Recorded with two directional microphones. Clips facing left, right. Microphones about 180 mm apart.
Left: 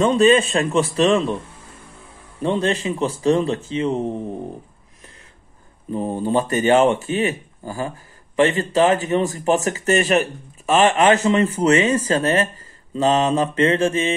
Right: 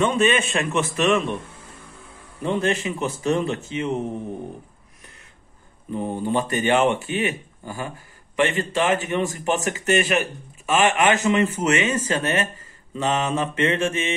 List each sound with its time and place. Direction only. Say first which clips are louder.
0.0 s speech: left 5 dB; 35° left (ahead or behind)
2.4 s speech: left 2 dB; 30° left (ahead or behind)
5.9 s speech: left 3 dB; 35° left (ahead or behind)